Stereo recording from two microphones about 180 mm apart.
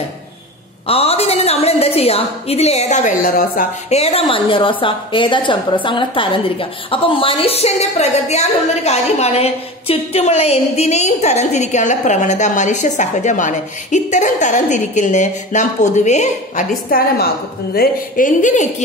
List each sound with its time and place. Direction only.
0.8 s a woman's voice: 35° left (ahead or behind); by 4.0 s 50° left (ahead or behind)
4.0 s a woman's voice: 30° left (ahead or behind)